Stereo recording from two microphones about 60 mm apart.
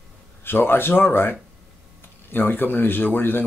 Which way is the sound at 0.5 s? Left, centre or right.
Left.